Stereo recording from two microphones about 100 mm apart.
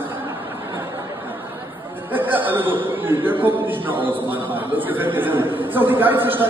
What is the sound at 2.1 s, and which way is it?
A man's voice, 20° right (ahead or behind).